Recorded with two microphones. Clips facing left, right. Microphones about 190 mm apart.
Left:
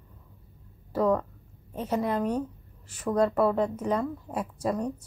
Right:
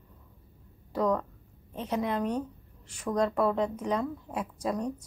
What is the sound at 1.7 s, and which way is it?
A woman's voice, 5° left (ahead or behind).